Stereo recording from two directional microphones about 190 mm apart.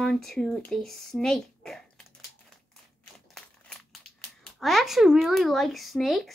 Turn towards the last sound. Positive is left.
turn(degrees=0)  # may be behind; listen again after turning